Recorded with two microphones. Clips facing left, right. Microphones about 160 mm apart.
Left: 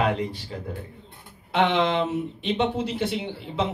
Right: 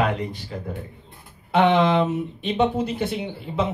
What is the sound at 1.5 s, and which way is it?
Speech, 55° right (ahead or behind).